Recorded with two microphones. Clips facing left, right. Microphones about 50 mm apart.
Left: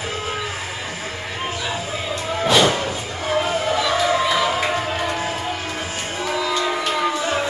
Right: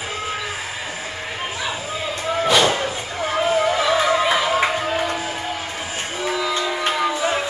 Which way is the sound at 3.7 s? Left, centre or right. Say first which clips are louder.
Right 1 dB; right.